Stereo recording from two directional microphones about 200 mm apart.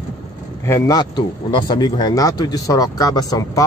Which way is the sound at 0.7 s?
15° left (ahead or behind).